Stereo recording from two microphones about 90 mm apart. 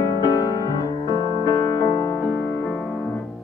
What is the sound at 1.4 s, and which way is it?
Music, 35° left (ahead or behind).